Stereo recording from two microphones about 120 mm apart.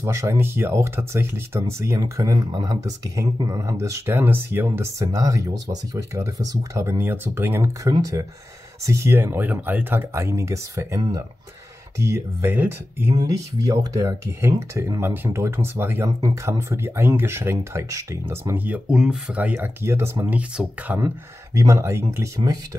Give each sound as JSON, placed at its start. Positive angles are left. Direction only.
{"t": 0.0, "sound": "speech", "side_deg": -25}
{"t": 12.0, "sound": "speech", "side_deg": -25}
{"t": 13.1, "sound": "speech", "side_deg": -35}
{"t": 21.5, "sound": "speech", "side_deg": -25}